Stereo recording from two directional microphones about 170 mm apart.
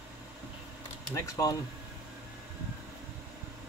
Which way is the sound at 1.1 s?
20° left (ahead or behind).